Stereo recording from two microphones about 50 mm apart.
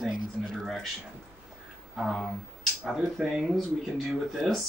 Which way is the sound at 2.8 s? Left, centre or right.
Centre.